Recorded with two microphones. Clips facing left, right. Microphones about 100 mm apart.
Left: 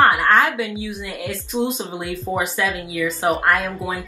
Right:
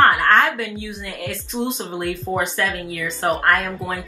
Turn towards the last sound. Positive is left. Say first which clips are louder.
# left 1 dB
turn(degrees=10)  # may be behind; listen again after turning